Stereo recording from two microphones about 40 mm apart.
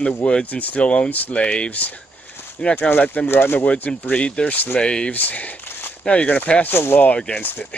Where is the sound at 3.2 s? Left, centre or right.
Left.